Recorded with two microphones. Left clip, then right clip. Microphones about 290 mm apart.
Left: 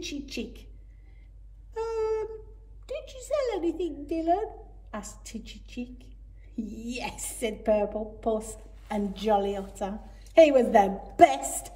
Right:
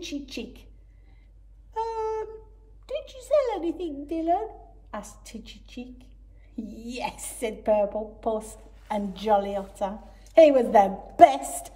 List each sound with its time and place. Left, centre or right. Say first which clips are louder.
0.0 s a woman's voice: right 1 dB; centre
2.9 s a woman's voice: right 6 dB; centre